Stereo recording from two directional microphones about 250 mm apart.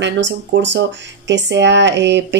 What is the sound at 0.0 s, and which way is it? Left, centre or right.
Speech, right.